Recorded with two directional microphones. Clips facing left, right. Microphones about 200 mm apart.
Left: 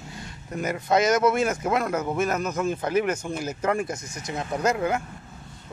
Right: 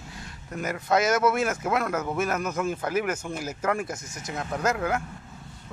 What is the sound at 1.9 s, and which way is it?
Speech, 10° left (ahead or behind).